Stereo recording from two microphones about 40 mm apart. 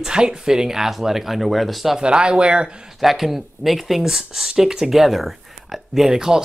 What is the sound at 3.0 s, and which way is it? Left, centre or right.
Speech, centre.